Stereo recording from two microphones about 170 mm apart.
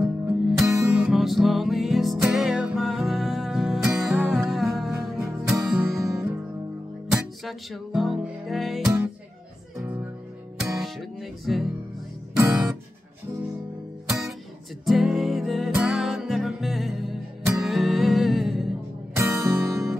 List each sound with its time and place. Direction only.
0.0 s music: 10° right (ahead or behind)
12.4 s music: 15° right (ahead or behind)
14.0 s music: 5° right (ahead or behind)
19.1 s music: 15° right (ahead or behind)